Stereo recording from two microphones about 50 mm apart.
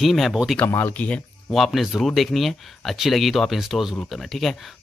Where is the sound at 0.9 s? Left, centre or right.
Left.